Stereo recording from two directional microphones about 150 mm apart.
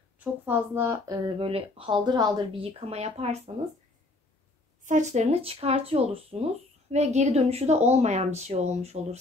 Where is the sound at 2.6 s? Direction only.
40° right (ahead or behind).